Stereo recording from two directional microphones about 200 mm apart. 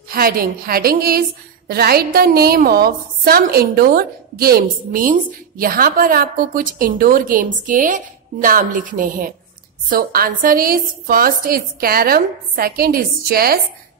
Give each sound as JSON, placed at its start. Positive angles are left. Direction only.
{"t": 0.1, "sound": "a woman's voice", "side_deg": -45}